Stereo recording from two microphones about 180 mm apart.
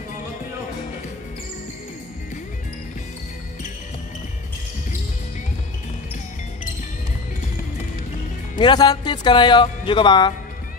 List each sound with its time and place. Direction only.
8.5 s speech: 25° left (ahead or behind)